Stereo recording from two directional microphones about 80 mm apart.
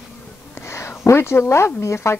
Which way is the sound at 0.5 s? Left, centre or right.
Left.